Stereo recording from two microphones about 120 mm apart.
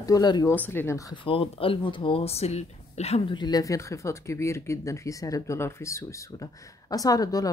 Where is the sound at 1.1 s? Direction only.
45° left (ahead or behind); by 3.2 s 65° left (ahead or behind).